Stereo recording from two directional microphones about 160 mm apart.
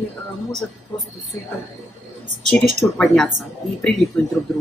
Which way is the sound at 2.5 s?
5° left (ahead or behind).